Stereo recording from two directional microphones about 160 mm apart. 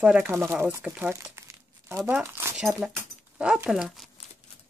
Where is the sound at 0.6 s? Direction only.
10° right (ahead or behind).